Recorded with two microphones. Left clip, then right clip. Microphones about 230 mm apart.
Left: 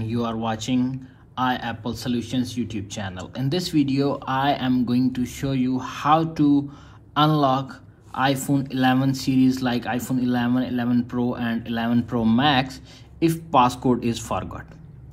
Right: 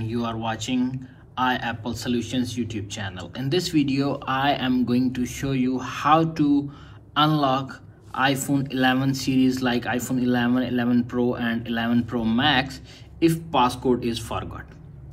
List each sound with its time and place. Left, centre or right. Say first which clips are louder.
0.0 s speech: left 1 dB; left